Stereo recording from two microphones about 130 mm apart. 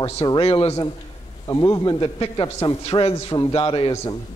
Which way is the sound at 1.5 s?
30° left (ahead or behind).